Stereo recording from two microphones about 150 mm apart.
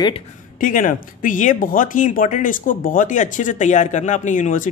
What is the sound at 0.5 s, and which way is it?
Speech, 60° left (ahead or behind).